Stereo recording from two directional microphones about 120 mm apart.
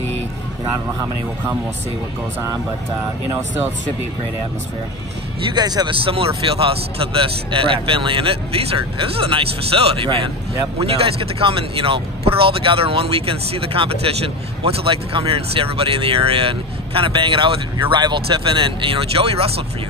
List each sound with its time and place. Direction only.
5.5 s speech: 35° right (ahead or behind)
5.9 s speech: 50° right (ahead or behind)